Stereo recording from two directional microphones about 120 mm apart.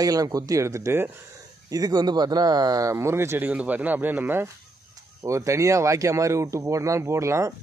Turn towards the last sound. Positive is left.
turn(degrees=-25)  # may be behind; listen again after turning